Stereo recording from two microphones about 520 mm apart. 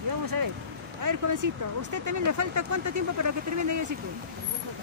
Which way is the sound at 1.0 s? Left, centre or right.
Right.